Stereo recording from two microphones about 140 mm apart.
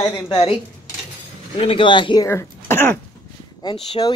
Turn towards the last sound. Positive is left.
turn(degrees=30)  # may be behind; listen again after turning